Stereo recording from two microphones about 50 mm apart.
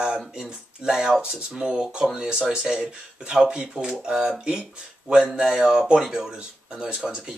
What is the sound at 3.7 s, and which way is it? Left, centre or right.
Speech, centre.